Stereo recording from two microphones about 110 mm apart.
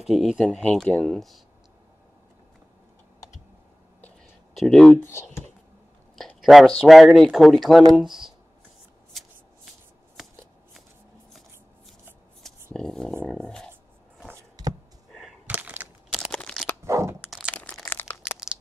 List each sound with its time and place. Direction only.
0.0 s speech: 5° right (ahead or behind)
0.5 s speech: 5° left (ahead or behind)
4.6 s speech: 5° left (ahead or behind)
4.9 s speech: 20° left (ahead or behind)
6.1 s a sound: centre (ahead or behind)
6.8 s speech: centre (ahead or behind)
12.7 s speech: 5° left (ahead or behind)
15.4 s a sound: 15° right (ahead or behind)
16.3 s a sound: 10° left (ahead or behind)
16.8 s crunch: 25° right (ahead or behind)
17.6 s crunch: centre (ahead or behind)
17.8 s crunch: 15° left (ahead or behind)